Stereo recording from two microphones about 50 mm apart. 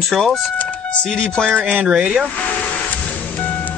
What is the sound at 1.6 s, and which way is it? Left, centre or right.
Speech, right.